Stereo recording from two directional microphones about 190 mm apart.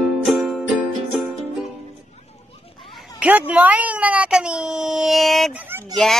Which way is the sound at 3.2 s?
5° right (ahead or behind).